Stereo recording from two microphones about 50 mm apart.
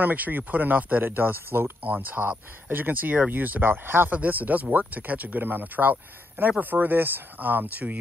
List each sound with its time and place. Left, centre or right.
0.0 s speech: right
1.8 s speech: right
3.6 s speech: right
4.1 s speech: right